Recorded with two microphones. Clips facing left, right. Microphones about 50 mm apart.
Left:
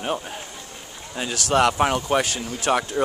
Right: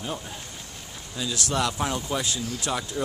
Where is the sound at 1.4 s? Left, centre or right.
Left.